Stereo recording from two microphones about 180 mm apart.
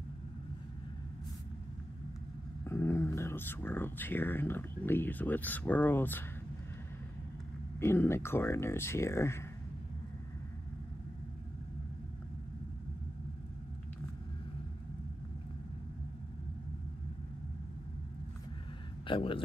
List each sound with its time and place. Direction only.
2.6 s speech: 15° left (ahead or behind)
7.8 s speech: 15° left (ahead or behind)
19.0 s speech: 30° left (ahead or behind)